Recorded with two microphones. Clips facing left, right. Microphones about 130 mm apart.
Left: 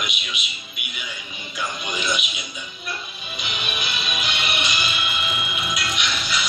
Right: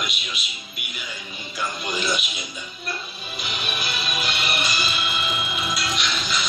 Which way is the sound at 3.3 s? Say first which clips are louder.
Even; 35° right (ahead or behind).